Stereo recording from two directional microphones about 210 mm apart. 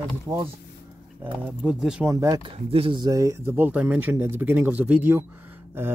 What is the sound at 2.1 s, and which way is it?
Speech, 15° right (ahead or behind).